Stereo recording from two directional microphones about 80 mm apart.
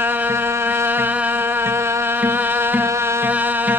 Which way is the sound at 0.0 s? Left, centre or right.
Right.